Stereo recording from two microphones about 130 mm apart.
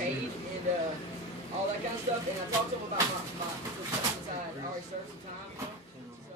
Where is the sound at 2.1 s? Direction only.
55° right (ahead or behind).